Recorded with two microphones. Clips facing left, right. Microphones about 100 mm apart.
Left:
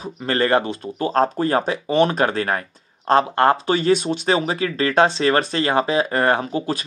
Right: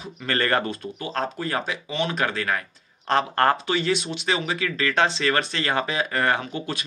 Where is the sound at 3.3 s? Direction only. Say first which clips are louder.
Left 4 dB; 20° left (ahead or behind).